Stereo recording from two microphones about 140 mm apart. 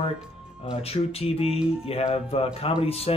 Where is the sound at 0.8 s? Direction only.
45° left (ahead or behind).